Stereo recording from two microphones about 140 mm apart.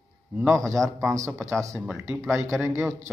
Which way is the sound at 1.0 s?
20° right (ahead or behind).